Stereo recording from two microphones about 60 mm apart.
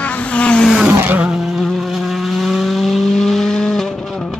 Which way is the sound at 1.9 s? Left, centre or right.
Centre.